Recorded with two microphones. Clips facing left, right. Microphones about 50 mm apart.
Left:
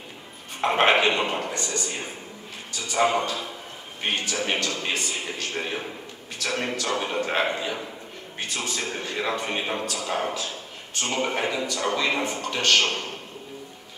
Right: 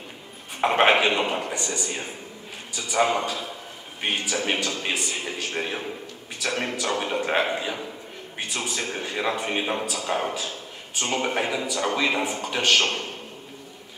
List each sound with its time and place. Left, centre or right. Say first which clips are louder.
0.6 s a man's voice: right 1 dB; centre